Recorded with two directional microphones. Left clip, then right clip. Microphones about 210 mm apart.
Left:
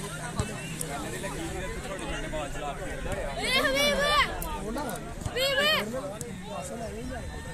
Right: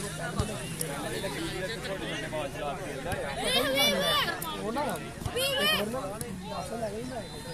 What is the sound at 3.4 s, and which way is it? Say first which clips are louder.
Speech: left 2 dB; 55° right (ahead or behind).